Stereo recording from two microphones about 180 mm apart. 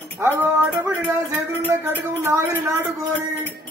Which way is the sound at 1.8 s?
15° right (ahead or behind).